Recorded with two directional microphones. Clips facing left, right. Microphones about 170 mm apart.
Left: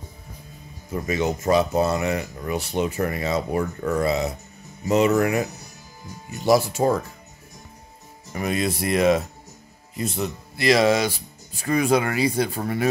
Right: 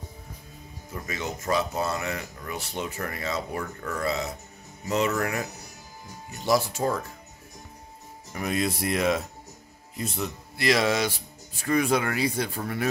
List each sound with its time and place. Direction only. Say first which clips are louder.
0.9 s speech: left 9 dB; 20° left (ahead or behind)
6.4 s speech: left 6 dB; 10° left (ahead or behind)
8.3 s speech: left 3 dB; centre (ahead or behind)
10.2 s speech: left 4 dB; centre (ahead or behind)